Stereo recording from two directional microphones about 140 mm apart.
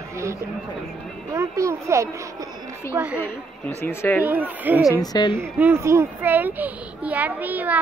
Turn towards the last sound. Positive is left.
turn(degrees=-10)  # may be behind; listen again after turning